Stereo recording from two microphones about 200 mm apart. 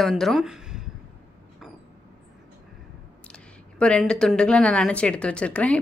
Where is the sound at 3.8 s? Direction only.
5° left (ahead or behind).